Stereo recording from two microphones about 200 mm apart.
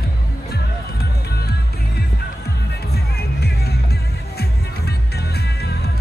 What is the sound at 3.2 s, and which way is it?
Music, 50° left (ahead or behind).